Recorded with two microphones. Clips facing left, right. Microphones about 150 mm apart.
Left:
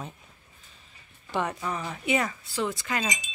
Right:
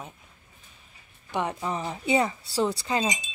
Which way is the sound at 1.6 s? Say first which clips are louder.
Right 2 dB; 25° right (ahead or behind).